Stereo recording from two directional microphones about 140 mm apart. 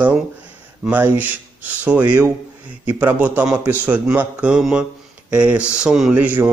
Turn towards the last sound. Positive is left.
turn(degrees=-10)  # may be behind; listen again after turning